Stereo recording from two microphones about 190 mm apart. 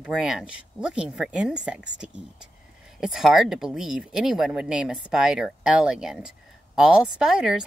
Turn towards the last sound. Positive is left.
turn(degrees=-5)  # may be behind; listen again after turning